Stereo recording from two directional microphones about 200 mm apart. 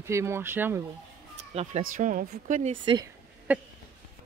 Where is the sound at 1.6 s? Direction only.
35° right (ahead or behind).